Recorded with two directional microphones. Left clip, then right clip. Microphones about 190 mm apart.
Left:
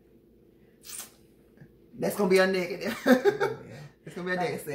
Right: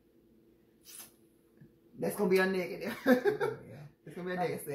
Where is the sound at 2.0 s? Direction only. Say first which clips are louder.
Left 6 dB; 20° left (ahead or behind).